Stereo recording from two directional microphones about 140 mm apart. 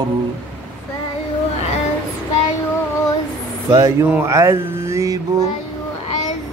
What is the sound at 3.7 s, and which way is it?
Speech, 20° right (ahead or behind).